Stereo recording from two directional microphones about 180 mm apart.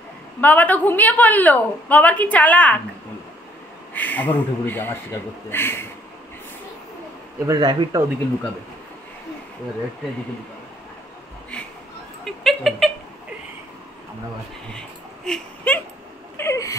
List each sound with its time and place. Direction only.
0.4 s a woman's voice: 10° left (ahead or behind)
3.9 s a woman's voice: 10° left (ahead or behind)
7.4 s speech: 20° right (ahead or behind)
11.5 s a sound: 5° left (ahead or behind)
15.2 s a sound: 5° left (ahead or behind)
16.3 s wheeze: 15° left (ahead or behind)